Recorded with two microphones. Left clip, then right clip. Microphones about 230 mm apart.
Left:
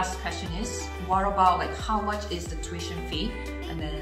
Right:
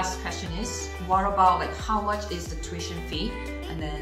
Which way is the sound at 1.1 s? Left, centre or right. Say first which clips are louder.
Right 1 dB; centre.